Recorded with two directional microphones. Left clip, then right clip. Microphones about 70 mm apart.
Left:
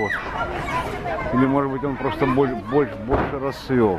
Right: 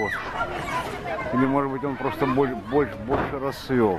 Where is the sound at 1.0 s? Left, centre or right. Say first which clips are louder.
Left 3 dB; centre.